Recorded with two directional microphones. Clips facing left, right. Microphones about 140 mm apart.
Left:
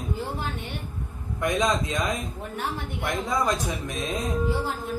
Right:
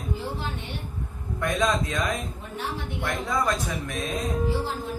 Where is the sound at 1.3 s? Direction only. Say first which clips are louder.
Left 1 dB; 20° left (ahead or behind).